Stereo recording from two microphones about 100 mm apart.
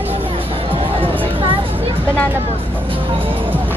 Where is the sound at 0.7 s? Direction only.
65° right (ahead or behind).